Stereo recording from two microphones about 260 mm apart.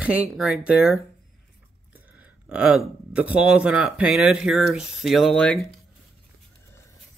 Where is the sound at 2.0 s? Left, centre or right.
Centre.